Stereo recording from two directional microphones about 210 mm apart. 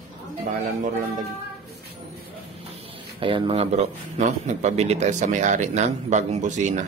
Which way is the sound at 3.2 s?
25° right (ahead or behind).